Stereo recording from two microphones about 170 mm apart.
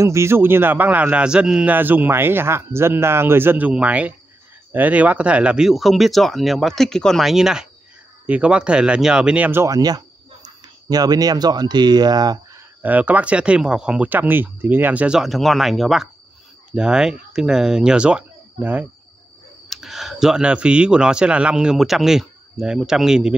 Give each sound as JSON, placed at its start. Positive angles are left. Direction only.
{"t": 0.0, "sound": "a man's voice", "side_deg": -15}
{"t": 12.8, "sound": "a man's voice", "side_deg": -10}